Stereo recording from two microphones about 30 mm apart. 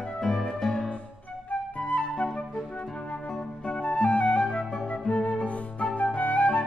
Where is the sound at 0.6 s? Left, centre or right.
Centre.